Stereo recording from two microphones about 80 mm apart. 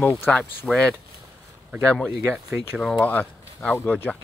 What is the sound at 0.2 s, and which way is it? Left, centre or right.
Speech, centre.